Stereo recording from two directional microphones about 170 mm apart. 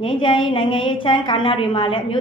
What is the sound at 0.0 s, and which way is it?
A woman's voice, 30° left (ahead or behind).